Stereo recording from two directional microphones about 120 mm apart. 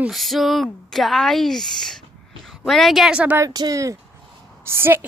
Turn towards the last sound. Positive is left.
turn(degrees=-20)  # may be behind; listen again after turning